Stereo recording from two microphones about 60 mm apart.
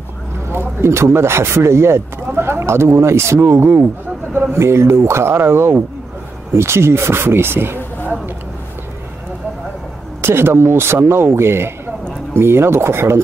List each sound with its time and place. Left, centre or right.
0.5 s speech: right
10.2 s a man's voice: right